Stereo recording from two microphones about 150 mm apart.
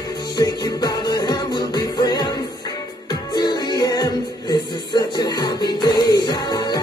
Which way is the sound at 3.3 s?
30° left (ahead or behind).